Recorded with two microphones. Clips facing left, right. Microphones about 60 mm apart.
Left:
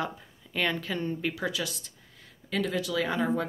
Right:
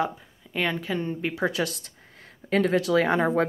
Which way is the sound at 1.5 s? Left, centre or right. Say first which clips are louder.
Right 6 dB; right.